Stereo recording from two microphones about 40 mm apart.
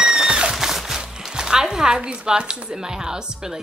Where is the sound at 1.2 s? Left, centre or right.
Centre.